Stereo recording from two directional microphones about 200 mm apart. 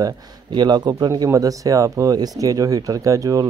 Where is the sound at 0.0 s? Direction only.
20° right (ahead or behind).